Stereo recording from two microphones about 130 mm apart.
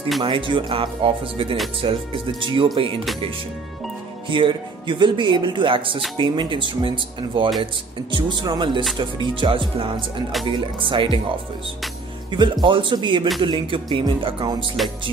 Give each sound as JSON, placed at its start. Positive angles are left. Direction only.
{"t": 0.2, "sound": "speech", "side_deg": -40}
{"t": 4.3, "sound": "speech", "side_deg": -40}
{"t": 12.3, "sound": "speech", "side_deg": -35}